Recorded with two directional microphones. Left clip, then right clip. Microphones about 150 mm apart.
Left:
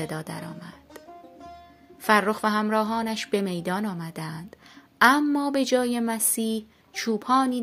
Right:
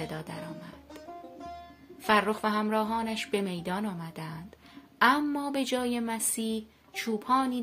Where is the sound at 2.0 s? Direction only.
45° left (ahead or behind).